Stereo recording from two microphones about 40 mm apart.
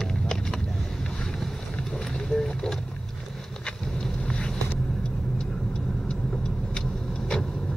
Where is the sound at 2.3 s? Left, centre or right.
Centre.